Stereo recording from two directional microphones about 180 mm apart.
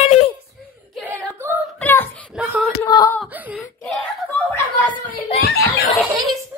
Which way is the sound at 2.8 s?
15° left (ahead or behind).